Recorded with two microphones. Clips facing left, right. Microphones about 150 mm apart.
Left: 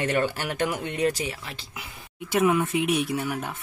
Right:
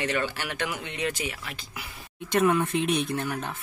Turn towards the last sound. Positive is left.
turn(degrees=10)  # may be behind; listen again after turning